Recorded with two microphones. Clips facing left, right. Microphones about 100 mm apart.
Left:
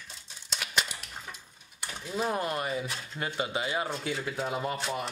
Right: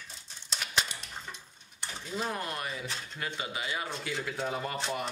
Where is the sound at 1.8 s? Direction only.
10° left (ahead or behind).